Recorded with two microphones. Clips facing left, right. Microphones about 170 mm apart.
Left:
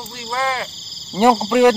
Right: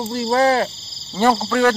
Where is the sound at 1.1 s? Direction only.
15° left (ahead or behind).